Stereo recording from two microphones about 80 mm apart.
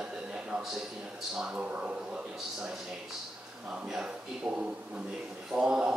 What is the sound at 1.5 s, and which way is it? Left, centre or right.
Speech, centre.